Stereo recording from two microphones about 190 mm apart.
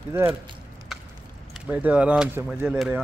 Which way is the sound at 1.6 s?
10° right (ahead or behind).